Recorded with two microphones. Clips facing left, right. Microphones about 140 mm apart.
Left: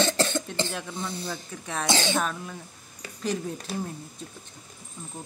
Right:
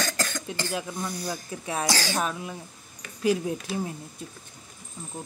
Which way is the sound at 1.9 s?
25° left (ahead or behind).